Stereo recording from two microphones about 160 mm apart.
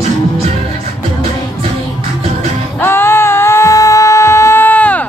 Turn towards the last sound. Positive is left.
turn(degrees=10)  # may be behind; listen again after turning